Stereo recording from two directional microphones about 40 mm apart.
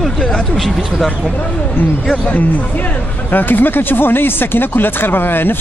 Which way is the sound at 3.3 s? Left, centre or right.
Left.